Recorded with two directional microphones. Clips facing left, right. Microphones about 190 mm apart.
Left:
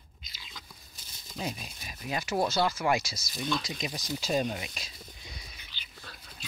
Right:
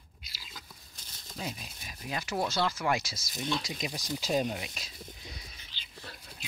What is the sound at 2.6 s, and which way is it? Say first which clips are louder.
Speech: left 3 dB; 5° left (ahead or behind).